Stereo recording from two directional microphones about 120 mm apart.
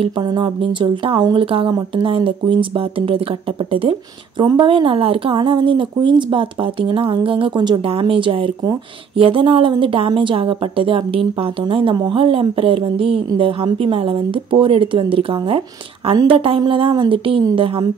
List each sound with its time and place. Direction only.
0.0 s speech: 40° right (ahead or behind)
4.4 s speech: 40° right (ahead or behind)